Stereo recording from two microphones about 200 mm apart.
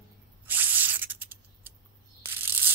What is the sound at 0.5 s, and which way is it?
Rub, 10° right (ahead or behind).